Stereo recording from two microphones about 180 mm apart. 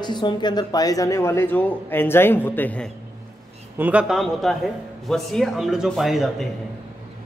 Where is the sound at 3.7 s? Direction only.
10° right (ahead or behind).